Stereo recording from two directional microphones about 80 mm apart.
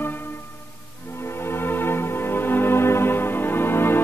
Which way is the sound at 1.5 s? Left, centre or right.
Left.